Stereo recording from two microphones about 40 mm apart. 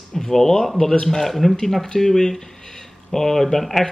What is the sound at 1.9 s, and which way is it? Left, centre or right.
A man's voice, centre.